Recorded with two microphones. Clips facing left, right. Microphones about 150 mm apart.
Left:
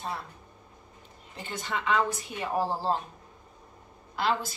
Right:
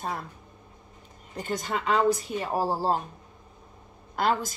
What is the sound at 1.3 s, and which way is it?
A woman's voice, 40° right (ahead or behind).